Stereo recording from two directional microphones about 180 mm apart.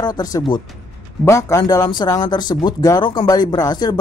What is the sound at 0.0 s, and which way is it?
Speech, 20° left (ahead or behind).